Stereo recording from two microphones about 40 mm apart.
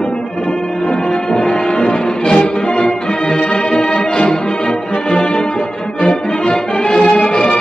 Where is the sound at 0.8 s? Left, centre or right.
Left.